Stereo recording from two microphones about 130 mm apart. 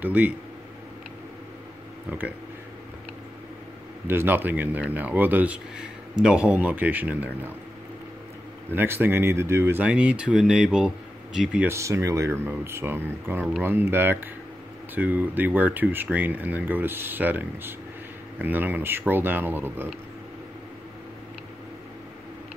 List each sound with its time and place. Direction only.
0.0 s speech: 10° right (ahead or behind)
4.1 s speech: 15° right (ahead or behind)
8.7 s speech: 15° right (ahead or behind)
11.6 s speech: 20° right (ahead or behind)